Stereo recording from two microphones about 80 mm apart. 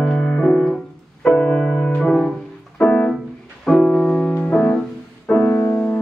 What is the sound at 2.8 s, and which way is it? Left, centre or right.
Piano, centre.